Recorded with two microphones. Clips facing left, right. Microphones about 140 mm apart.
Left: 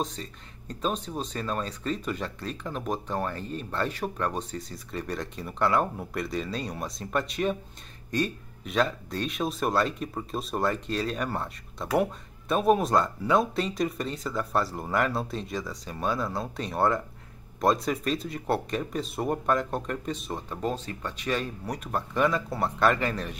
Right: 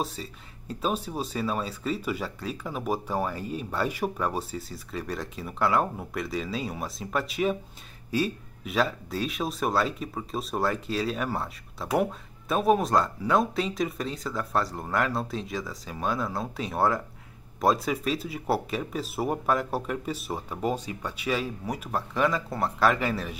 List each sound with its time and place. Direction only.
0.0 s speech: 5° right (ahead or behind)